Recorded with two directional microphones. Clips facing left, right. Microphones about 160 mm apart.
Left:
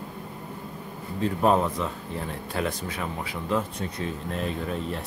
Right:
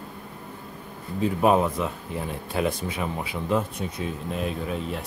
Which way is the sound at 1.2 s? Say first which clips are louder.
Right 2 dB; 10° right (ahead or behind).